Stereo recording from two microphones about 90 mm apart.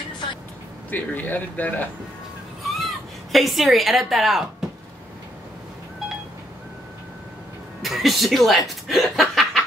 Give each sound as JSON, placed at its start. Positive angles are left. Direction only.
{"t": 0.8, "sound": "a man's voice", "side_deg": 20}
{"t": 2.8, "sound": "speech", "side_deg": 0}
{"t": 7.8, "sound": "speech", "side_deg": 0}